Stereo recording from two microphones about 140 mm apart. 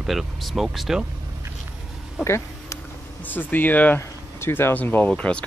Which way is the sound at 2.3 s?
20° left (ahead or behind).